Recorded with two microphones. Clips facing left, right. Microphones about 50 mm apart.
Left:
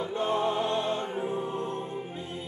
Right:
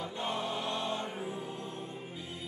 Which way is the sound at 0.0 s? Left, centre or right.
Left.